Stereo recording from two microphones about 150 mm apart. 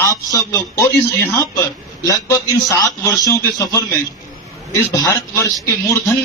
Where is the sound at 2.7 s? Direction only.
20° left (ahead or behind).